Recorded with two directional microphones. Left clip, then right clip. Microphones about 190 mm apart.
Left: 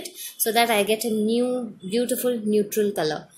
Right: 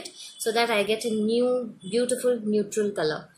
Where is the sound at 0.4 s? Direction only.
35° left (ahead or behind).